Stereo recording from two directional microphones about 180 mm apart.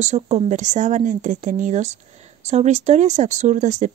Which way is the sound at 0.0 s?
40° right (ahead or behind).